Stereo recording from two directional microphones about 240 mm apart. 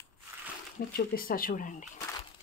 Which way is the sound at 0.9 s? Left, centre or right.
Left.